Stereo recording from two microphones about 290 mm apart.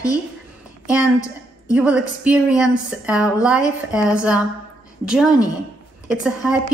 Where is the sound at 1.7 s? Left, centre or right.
Centre.